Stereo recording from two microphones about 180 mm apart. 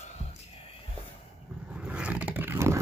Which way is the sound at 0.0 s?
35° left (ahead or behind).